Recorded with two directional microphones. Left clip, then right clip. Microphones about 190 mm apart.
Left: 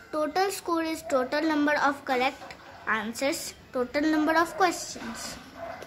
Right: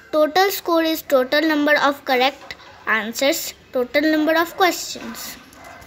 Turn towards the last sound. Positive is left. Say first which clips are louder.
# right 7 dB
turn(degrees=-10)  # may be behind; listen again after turning